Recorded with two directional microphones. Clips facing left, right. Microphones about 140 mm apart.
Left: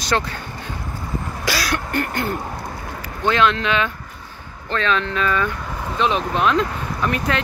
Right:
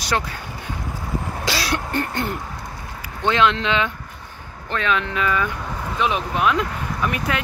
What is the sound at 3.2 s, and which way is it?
Speech, 20° right (ahead or behind).